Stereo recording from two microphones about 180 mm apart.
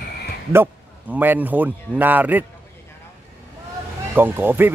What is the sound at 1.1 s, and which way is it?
A man's voice, 10° right (ahead or behind).